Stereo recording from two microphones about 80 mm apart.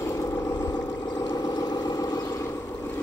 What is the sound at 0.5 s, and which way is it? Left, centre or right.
Vehicle, left.